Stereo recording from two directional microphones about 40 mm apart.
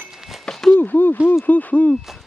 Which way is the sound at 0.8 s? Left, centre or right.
Left.